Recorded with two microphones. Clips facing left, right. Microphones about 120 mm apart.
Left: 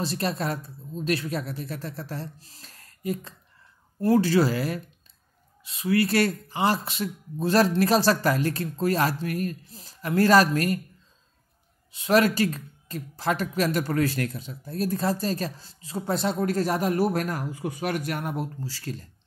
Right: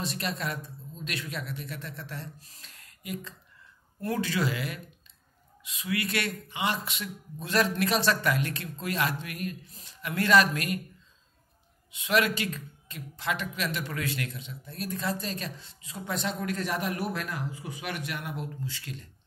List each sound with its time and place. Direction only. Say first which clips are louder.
0.0 s speech: left 5 dB; 35° left (ahead or behind)
11.9 s speech: left 5 dB; 40° left (ahead or behind); by 17.8 s 55° left (ahead or behind)
17.8 s speech: left 7 dB; 40° left (ahead or behind)